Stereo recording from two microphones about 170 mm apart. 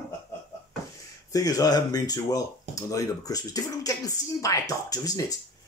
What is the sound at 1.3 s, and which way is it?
Speech, 20° left (ahead or behind).